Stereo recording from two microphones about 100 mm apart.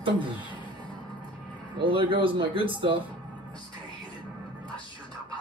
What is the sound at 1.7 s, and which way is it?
Speech, 55° right (ahead or behind).